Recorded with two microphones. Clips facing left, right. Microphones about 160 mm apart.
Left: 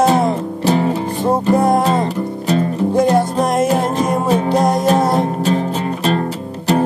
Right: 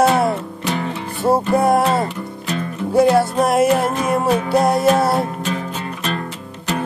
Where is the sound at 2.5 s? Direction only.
35° left (ahead or behind).